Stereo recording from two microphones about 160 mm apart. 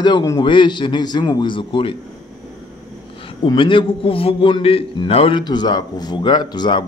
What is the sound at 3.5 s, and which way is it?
A man's voice, 30° left (ahead or behind).